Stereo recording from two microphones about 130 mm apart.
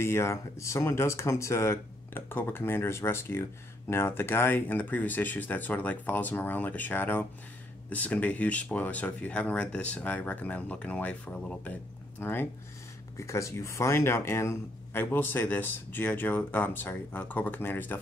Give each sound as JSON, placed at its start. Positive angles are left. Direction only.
{"t": 0.0, "sound": "speech", "side_deg": 20}